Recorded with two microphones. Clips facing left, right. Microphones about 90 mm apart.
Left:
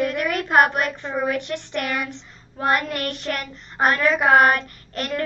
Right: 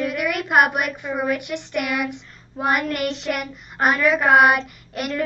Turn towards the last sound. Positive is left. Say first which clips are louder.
# right 2 dB
turn(degrees=-10)  # may be behind; listen again after turning